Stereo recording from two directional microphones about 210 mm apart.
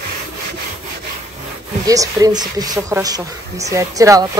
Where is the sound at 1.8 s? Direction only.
15° right (ahead or behind).